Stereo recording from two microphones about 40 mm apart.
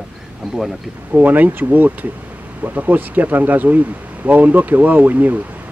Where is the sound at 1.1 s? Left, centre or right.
Right.